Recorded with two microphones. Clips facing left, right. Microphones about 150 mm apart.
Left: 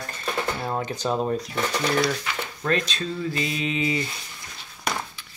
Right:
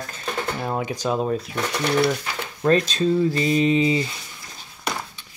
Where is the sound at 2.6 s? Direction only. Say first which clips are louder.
Right 8 dB; 40° right (ahead or behind).